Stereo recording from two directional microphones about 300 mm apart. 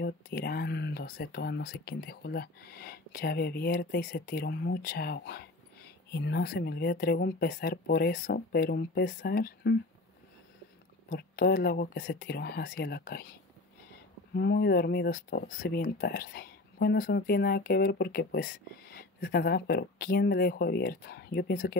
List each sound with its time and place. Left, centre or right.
0.0 s speech: left
11.1 s speech: left